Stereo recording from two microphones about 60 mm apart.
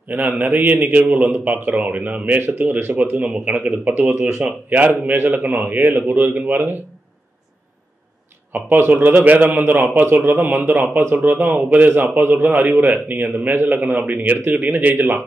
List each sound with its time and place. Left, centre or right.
0.4 s speech: right
1.1 s a man's voice: centre
8.5 s a man's voice: right
15.0 s a man's voice: right